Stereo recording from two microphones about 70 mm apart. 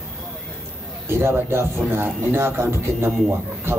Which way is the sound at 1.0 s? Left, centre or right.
Right.